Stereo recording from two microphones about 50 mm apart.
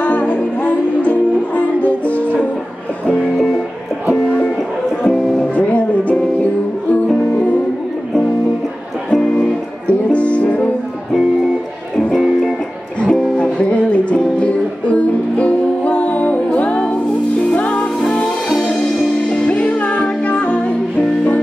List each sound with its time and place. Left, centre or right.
0.0 s music: left
5.6 s music: left
9.1 s music: centre
10.1 s music: left
12.1 s music: centre
13.0 s music: centre
19.4 s music: left